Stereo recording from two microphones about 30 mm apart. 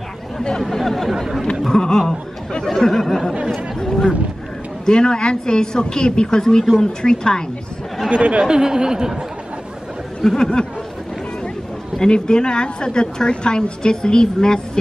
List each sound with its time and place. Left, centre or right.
0.6 s speech: centre
1.1 s speech: centre
1.7 s a woman's voice: centre
4.8 s a woman's voice: left
6.4 s speech: centre
6.8 s a woman's voice: left
8.1 s speech: right
8.5 s speech: right
10.2 s a woman's voice: left
12.0 s a woman's voice: left